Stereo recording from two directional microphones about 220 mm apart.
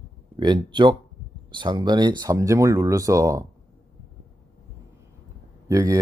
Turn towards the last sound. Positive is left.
turn(degrees=-15)  # may be behind; listen again after turning